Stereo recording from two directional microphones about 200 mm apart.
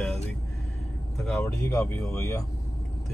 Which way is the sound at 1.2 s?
10° left (ahead or behind).